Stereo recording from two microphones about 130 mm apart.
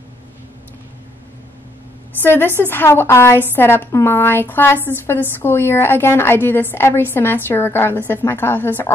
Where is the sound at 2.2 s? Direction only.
15° left (ahead or behind).